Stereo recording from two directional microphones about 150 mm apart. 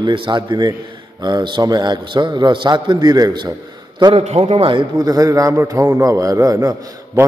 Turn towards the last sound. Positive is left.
turn(degrees=-25)  # may be behind; listen again after turning